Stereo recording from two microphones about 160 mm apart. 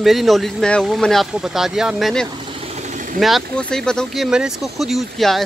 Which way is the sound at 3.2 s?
Centre (ahead or behind).